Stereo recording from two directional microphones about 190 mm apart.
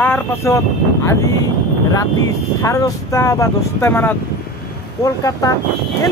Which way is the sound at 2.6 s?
15° left (ahead or behind).